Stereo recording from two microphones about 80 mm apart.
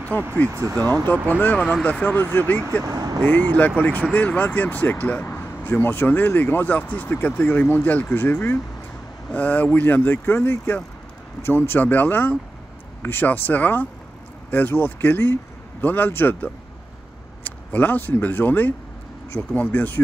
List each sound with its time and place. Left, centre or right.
0.1 s speech: left
0.5 s speech: right
1.3 s speech: centre
2.8 s speech: right
3.5 s speech: left